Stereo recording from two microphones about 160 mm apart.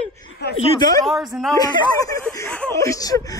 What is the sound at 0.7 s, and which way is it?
Speech, 25° left (ahead or behind).